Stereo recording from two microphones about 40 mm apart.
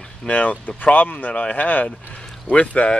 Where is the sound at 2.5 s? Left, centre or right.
Left.